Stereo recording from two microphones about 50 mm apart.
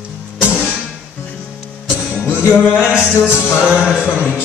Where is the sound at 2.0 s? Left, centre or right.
Right.